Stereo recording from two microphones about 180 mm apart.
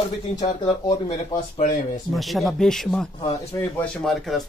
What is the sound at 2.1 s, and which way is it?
A man's voice, centre (ahead or behind).